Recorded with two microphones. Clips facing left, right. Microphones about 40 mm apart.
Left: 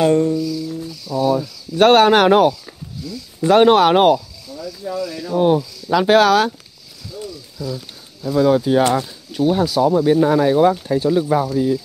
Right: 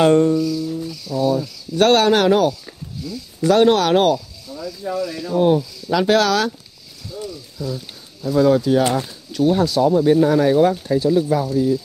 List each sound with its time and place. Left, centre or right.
0.0 s music: right
1.1 s speech: left
2.1 s speech: left
3.4 s speech: left
5.3 s speech: centre
8.2 s speech: centre; by 11.8 s left